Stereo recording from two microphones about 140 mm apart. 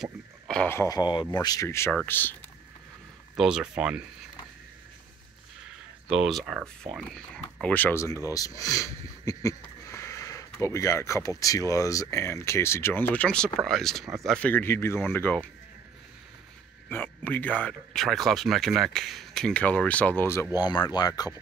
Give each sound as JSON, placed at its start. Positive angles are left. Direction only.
{"t": 0.0, "sound": "speech", "side_deg": 5}
{"t": 0.7, "sound": "speech", "side_deg": 20}
{"t": 3.3, "sound": "speech", "side_deg": -5}
{"t": 6.0, "sound": "speech", "side_deg": -5}
{"t": 16.9, "sound": "speech", "side_deg": 15}
{"t": 20.5, "sound": "speech", "side_deg": 30}